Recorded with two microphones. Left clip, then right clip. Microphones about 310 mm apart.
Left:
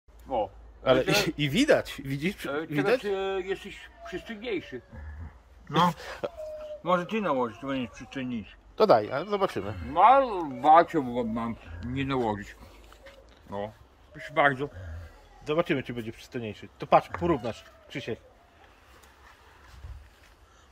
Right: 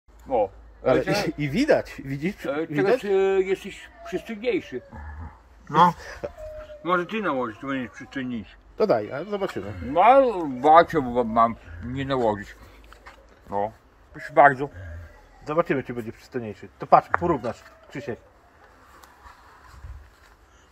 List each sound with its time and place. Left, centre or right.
0.8 s speech: centre
2.5 s speech: right
4.9 s a sound: centre
6.0 s speech: centre
6.6 s speech: left; by 9.8 s centre
9.9 s speech: right
11.9 s speech: centre